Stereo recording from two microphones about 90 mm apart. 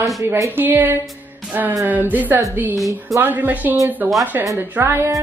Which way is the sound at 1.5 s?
20° right (ahead or behind).